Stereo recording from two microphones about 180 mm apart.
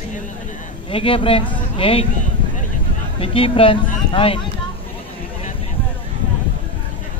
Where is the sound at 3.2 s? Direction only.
30° left (ahead or behind).